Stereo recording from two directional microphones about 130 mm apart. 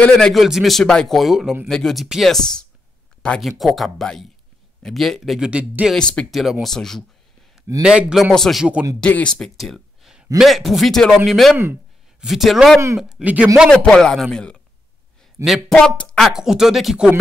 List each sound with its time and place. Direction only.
0.0 s a man's voice: 5° left (ahead or behind)
5.9 s a man's voice: 5° left (ahead or behind)
9.0 s a man's voice: 10° left (ahead or behind)
11.5 s speech: 15° right (ahead or behind)
12.2 s a man's voice: centre (ahead or behind)
13.2 s speech: 10° right (ahead or behind)
13.7 s a man's voice: 5° left (ahead or behind)
16.3 s a man's voice: 5° right (ahead or behind)